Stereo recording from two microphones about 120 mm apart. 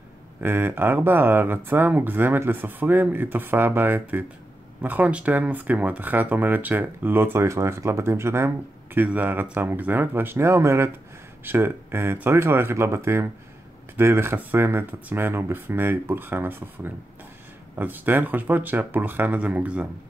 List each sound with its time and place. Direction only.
0.4 s speech: 20° right (ahead or behind)